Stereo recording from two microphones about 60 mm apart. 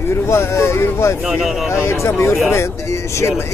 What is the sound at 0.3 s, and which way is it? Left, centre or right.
Speech, left.